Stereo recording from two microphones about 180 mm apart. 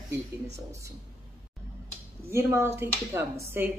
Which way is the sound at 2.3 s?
15° right (ahead or behind).